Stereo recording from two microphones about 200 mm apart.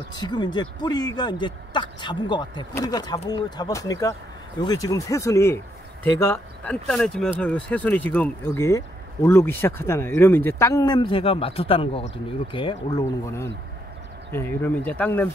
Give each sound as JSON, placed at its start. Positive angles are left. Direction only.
{"t": 0.2, "sound": "speech", "side_deg": 20}
{"t": 14.3, "sound": "speech", "side_deg": 10}